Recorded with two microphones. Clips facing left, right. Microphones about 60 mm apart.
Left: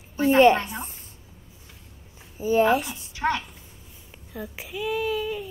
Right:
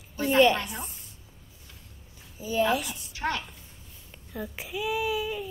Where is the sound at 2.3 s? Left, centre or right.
Left.